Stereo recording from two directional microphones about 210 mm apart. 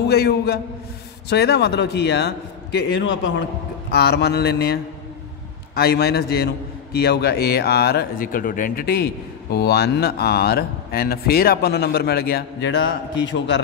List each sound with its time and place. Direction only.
0.0 s a man's voice: 50° left (ahead or behind)
5.8 s a man's voice: 50° left (ahead or behind)